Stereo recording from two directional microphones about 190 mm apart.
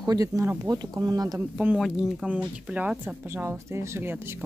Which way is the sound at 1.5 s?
5° right (ahead or behind).